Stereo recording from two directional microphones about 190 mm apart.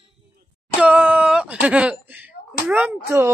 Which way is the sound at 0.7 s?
10° right (ahead or behind).